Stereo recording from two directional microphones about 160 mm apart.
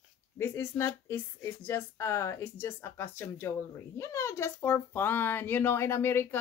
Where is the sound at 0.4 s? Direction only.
15° left (ahead or behind).